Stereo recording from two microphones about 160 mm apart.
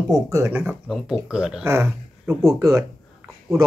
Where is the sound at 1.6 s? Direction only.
15° right (ahead or behind).